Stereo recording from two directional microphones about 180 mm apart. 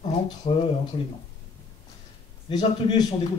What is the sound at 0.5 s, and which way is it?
Speech, 30° left (ahead or behind).